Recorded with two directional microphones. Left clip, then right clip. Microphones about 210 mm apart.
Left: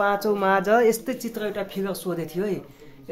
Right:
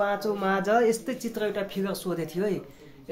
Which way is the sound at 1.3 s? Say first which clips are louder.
Right 1 dB; centre (ahead or behind).